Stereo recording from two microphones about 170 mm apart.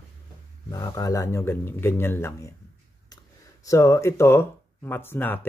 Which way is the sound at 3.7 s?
15° left (ahead or behind).